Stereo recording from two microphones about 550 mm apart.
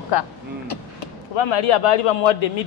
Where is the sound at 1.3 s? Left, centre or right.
Left.